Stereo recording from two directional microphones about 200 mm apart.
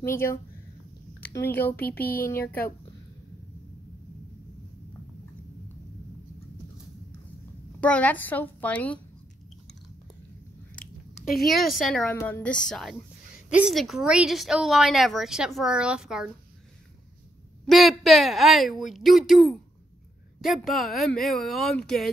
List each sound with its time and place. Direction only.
0.0 s a woman's voice: 15° left (ahead or behind)
1.8 s speech: 50° left (ahead or behind)
7.8 s a woman's voice: 5° left (ahead or behind)
10.8 s chewing: 45° left (ahead or behind)
11.3 s speech: centre (ahead or behind)
17.6 s speech: centre (ahead or behind)